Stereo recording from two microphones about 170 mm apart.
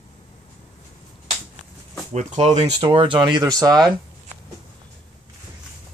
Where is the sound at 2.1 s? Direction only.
45° right (ahead or behind); by 3.9 s 25° right (ahead or behind).